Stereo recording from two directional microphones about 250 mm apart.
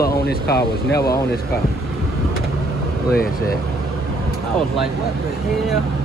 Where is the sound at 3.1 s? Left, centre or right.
Left.